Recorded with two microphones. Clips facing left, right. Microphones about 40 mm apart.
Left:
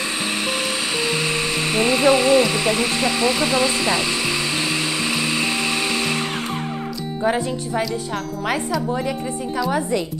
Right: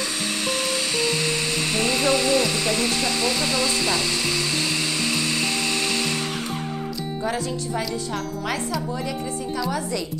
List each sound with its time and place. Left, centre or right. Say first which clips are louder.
1.7 s speech: left 6 dB; centre
7.2 s speech: left 6 dB; left
9.7 s speech: left 5 dB; left